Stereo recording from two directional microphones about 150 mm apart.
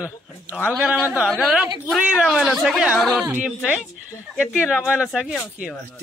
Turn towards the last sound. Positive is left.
turn(degrees=-5)  # may be behind; listen again after turning